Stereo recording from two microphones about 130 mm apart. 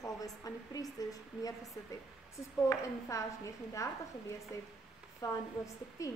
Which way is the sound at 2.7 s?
25° left (ahead or behind).